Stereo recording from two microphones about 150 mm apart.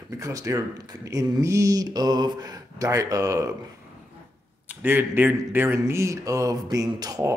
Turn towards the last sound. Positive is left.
turn(degrees=-25)  # may be behind; listen again after turning